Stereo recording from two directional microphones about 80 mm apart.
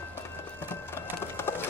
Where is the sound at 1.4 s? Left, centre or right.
Left.